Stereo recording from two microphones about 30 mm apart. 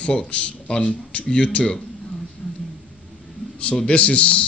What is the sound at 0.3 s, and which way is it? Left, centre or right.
Speech, left.